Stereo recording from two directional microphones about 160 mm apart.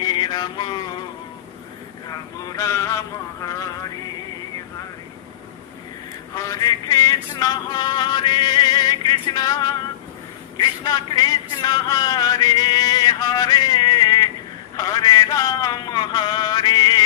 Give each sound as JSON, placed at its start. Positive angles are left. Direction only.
{"t": 0.0, "sound": "mantra", "side_deg": 30}
{"t": 2.0, "sound": "speech", "side_deg": 20}
{"t": 6.3, "sound": "a sound", "side_deg": 20}